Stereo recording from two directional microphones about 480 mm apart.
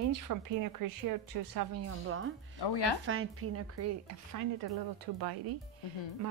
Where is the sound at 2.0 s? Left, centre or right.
Right.